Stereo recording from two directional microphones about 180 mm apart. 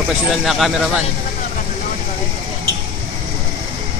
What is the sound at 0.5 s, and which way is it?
Speech, centre (ahead or behind).